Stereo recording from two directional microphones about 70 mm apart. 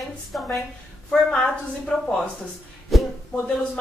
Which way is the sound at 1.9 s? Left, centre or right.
Centre.